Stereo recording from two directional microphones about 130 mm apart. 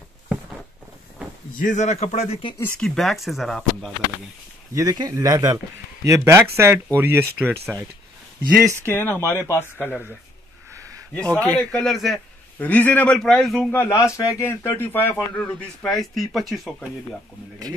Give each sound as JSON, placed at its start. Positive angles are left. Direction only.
{"t": 1.6, "sound": "speech", "side_deg": 70}
{"t": 2.8, "sound": "speech", "side_deg": 0}
{"t": 4.7, "sound": "speech", "side_deg": -30}
{"t": 8.8, "sound": "a man's voice", "side_deg": 15}
{"t": 10.7, "sound": "a sound", "side_deg": -25}
{"t": 11.1, "sound": "a man's voice", "side_deg": 10}
{"t": 12.5, "sound": "a man's voice", "side_deg": 10}
{"t": 13.7, "sound": "a man's voice", "side_deg": 20}